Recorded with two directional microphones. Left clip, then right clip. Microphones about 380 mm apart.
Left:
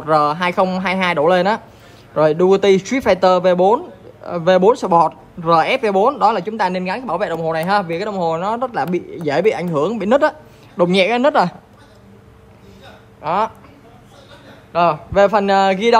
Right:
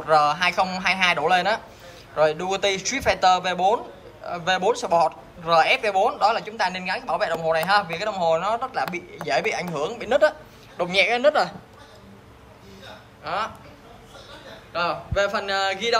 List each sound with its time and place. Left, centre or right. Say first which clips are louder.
0.0 s a man's voice: left 3 dB; centre
13.2 s speech: left 9 dB; centre
14.7 s a man's voice: left 10 dB; centre